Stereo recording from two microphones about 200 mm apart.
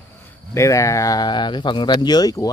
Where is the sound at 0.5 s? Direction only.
15° left (ahead or behind).